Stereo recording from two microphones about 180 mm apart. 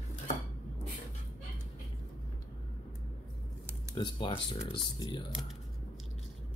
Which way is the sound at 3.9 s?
25° left (ahead or behind).